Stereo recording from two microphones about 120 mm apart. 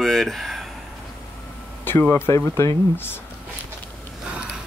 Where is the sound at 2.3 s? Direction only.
25° left (ahead or behind).